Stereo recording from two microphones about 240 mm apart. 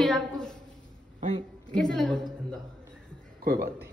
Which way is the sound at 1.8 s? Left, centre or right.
Centre.